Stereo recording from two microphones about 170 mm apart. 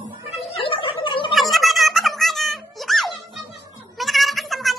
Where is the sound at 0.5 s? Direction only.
30° left (ahead or behind).